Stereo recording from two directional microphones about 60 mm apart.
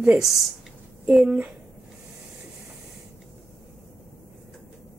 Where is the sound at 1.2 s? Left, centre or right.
Centre.